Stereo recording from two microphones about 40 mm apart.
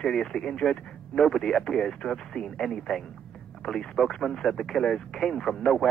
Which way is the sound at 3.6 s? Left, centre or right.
Centre.